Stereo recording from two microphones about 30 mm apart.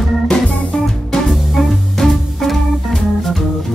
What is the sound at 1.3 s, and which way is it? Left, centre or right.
Music, centre.